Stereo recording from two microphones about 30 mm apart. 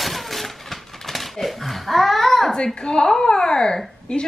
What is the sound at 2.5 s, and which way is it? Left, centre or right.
A woman's voice, left.